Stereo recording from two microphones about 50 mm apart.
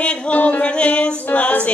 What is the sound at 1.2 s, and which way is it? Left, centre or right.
Female singing, left.